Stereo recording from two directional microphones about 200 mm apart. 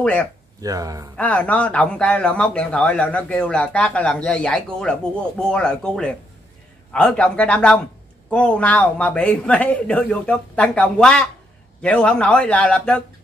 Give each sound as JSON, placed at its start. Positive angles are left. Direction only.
{"t": 0.0, "sound": "speech", "side_deg": 5}
{"t": 0.6, "sound": "speech", "side_deg": -15}
{"t": 1.1, "sound": "a man's voice", "side_deg": 5}